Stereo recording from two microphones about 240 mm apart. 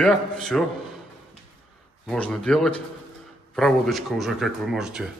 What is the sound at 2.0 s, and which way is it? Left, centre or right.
Speech, centre.